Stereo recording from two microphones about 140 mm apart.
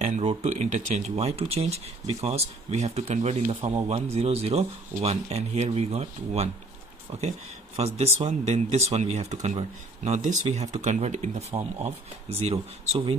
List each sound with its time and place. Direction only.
0.0 s speech: 55° right (ahead or behind)